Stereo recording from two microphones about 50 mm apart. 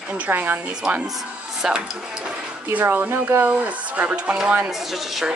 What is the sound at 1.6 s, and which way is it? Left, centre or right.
Music, centre.